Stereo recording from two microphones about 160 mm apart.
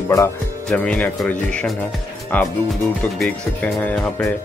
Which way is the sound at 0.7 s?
5° left (ahead or behind).